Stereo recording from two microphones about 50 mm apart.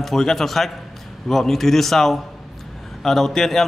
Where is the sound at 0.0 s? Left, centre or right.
Centre.